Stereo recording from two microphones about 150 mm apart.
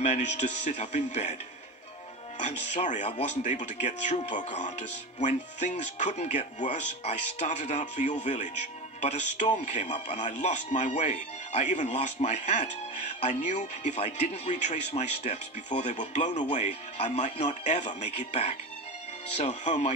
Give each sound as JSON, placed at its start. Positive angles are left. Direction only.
{"t": 0.0, "sound": "speech", "side_deg": 50}
{"t": 2.3, "sound": "speech", "side_deg": 50}